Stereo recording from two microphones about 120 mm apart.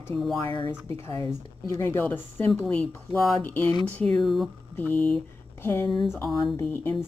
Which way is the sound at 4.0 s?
5° left (ahead or behind).